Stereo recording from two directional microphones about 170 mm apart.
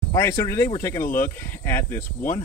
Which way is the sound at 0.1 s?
15° left (ahead or behind).